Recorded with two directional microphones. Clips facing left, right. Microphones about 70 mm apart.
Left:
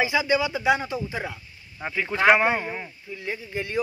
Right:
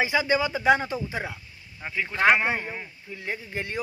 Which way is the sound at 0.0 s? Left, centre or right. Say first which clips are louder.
Left 1 dB; right.